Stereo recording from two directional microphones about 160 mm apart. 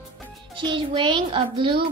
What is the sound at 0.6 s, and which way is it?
A child's voice, 30° right (ahead or behind).